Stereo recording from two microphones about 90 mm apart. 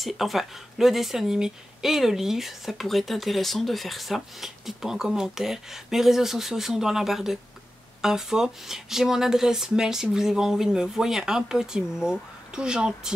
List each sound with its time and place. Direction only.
0.0 s speech: centre (ahead or behind)